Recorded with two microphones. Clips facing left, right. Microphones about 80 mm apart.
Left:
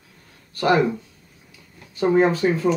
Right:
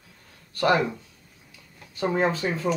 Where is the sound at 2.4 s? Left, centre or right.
Centre.